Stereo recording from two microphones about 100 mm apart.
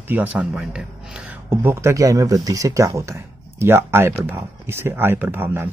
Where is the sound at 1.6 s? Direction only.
25° right (ahead or behind).